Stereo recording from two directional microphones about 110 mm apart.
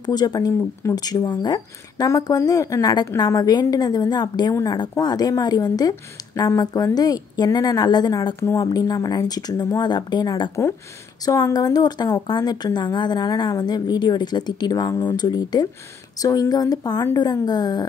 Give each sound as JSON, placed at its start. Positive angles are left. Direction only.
{"t": 0.0, "sound": "a woman's voice", "side_deg": 35}
{"t": 8.4, "sound": "a woman's voice", "side_deg": 30}